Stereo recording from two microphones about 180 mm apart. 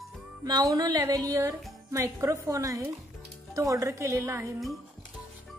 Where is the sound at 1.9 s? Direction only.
15° right (ahead or behind).